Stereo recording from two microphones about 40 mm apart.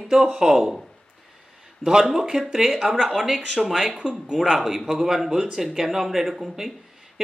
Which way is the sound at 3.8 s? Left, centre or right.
Right.